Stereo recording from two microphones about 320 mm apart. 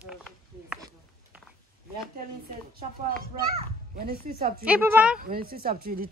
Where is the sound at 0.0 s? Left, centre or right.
Centre.